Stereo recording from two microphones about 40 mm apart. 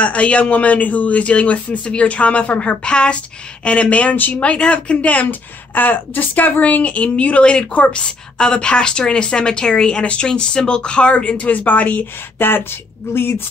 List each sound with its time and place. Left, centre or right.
0.0 s a woman's voice: left
2.8 s a woman's voice: left
4.1 s speech: left
4.4 s a woman's voice: left
12.4 s speech: left